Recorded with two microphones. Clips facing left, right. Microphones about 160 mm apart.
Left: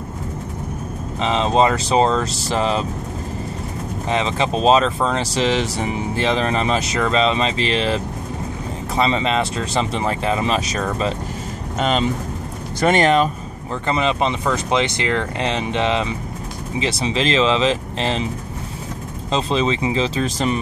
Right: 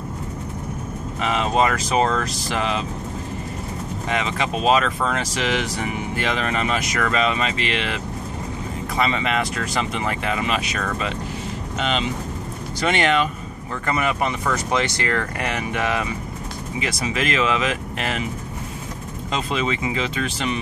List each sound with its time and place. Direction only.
1.2 s speech: 25° left (ahead or behind)
4.1 s speech: 30° left (ahead or behind)
13.8 s speech: 20° left (ahead or behind)
19.3 s speech: 30° left (ahead or behind)